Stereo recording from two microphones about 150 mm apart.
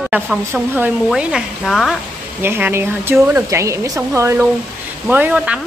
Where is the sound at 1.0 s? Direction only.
Centre (ahead or behind).